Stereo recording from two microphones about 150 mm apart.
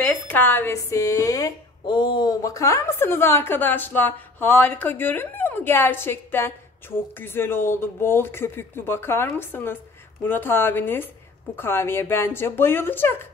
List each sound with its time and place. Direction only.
0.0 s a woman's voice: 15° left (ahead or behind)